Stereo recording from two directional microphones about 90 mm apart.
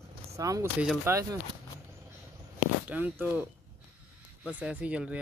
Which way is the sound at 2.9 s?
20° right (ahead or behind).